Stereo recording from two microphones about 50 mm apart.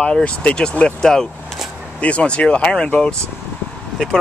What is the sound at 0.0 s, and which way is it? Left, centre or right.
Speech, left.